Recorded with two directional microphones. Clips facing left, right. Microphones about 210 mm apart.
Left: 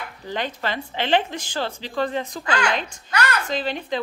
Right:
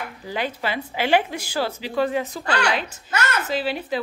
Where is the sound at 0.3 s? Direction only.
10° right (ahead or behind).